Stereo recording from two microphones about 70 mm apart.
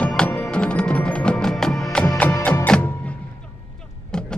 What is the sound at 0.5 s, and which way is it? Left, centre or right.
Music, centre.